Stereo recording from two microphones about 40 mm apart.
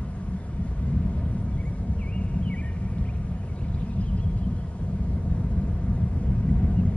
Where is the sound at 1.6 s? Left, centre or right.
Left.